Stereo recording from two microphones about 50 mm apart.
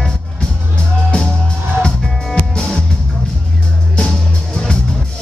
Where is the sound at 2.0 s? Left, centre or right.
Centre.